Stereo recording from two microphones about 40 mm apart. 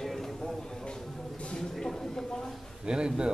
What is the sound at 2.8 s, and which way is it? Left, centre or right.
Music, right.